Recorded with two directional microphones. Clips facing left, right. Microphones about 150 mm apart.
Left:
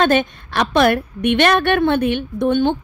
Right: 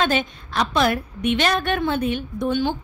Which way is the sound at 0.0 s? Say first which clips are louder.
Left 6 dB; 55° left (ahead or behind).